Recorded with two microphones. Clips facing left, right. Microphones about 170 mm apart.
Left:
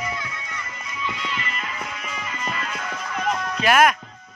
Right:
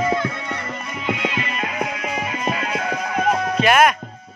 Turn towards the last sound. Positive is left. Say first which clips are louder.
# right 2 dB
turn(degrees=0)  # may be behind; listen again after turning